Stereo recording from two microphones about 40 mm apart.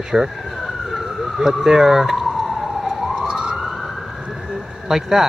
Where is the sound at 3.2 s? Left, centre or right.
Centre.